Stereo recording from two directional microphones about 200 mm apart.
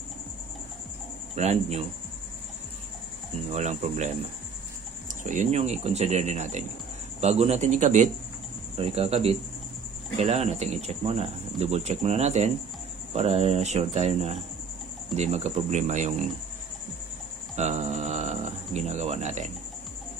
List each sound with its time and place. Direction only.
1.3 s speech: 35° right (ahead or behind)
3.5 s speech: 35° right (ahead or behind)
17.6 s speech: 35° right (ahead or behind)